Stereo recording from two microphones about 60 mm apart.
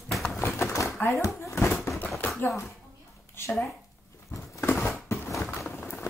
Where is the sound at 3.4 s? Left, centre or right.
Left.